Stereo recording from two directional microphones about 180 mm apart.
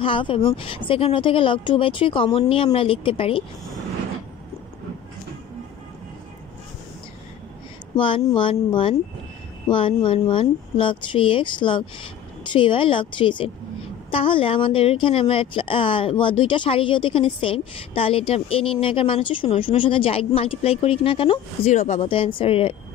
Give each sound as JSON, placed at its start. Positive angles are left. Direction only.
{"t": 0.0, "sound": "speech", "side_deg": 30}
{"t": 7.9, "sound": "speech", "side_deg": 25}